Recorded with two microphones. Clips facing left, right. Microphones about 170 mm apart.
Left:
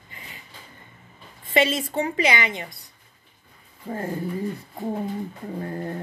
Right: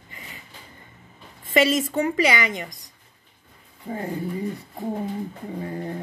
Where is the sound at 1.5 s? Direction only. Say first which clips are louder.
Right 2 dB; 45° right (ahead or behind).